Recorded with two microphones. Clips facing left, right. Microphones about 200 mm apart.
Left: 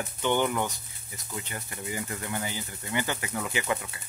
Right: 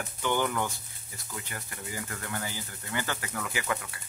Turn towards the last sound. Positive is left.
turn(degrees=20)  # may be behind; listen again after turning